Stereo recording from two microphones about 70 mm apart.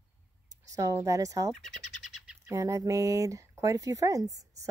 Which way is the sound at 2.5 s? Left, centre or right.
Right.